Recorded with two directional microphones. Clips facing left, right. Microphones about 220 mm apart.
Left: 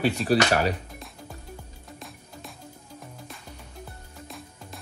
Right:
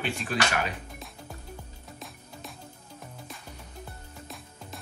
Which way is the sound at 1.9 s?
Centre (ahead or behind).